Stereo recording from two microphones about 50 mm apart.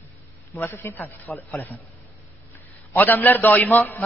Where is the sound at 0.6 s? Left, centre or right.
Left.